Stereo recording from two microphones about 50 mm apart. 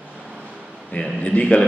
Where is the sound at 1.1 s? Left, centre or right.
Left.